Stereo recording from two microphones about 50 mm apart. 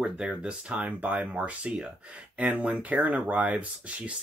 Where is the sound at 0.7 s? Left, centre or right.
Right.